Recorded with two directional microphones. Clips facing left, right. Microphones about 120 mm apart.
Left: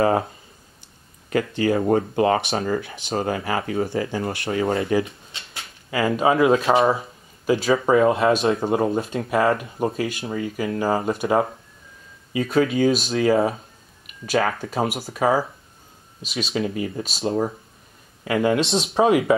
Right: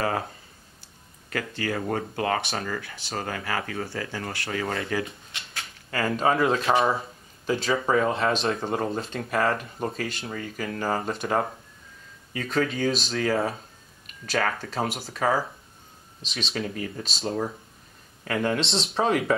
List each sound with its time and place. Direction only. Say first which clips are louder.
1.3 s speech: left 9 dB; 20° left (ahead or behind)
5.9 s speech: left 4 dB; 10° left (ahead or behind)
6.6 s speech: left 4 dB; 20° left (ahead or behind)
7.4 s speech: left 6 dB; 10° left (ahead or behind)